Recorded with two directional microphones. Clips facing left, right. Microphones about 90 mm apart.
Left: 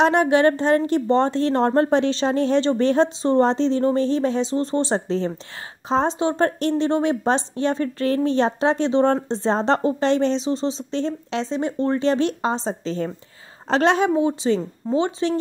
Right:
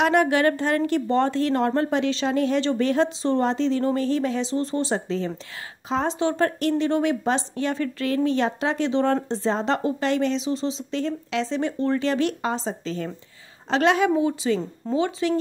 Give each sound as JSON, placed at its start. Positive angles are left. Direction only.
{"t": 0.0, "sound": "a woman's voice", "side_deg": 25}